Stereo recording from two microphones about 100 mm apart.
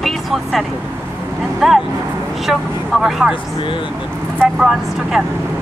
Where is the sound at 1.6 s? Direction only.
Centre (ahead or behind).